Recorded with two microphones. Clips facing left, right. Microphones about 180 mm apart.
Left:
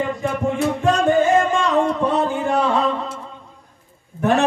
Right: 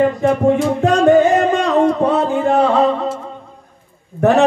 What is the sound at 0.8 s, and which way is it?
Music, 65° right (ahead or behind).